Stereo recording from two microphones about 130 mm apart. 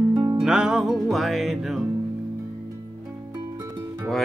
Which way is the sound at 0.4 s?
5° right (ahead or behind).